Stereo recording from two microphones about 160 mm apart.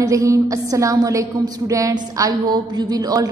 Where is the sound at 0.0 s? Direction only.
20° right (ahead or behind).